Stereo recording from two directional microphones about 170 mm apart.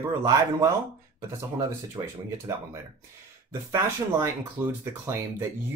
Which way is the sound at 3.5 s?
15° right (ahead or behind).